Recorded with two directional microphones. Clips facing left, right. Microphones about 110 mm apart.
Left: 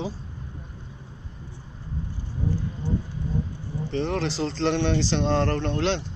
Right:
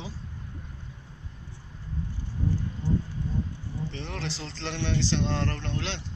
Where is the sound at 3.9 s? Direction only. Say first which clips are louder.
Left 10 dB; 45° left (ahead or behind).